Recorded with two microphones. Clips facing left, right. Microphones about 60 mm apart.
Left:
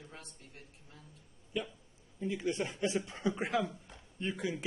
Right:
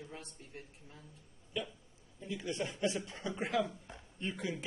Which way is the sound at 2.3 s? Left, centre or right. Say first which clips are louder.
Left 4 dB; left.